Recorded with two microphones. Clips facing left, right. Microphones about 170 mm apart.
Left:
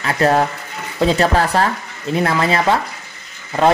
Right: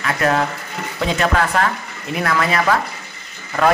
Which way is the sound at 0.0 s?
30° left (ahead or behind).